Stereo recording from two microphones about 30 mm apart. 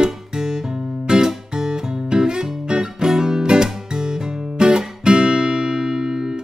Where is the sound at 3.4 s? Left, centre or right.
Right.